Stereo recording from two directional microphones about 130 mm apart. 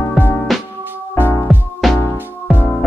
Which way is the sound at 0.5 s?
Centre (ahead or behind).